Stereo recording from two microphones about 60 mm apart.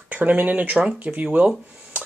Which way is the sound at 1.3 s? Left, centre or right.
Right.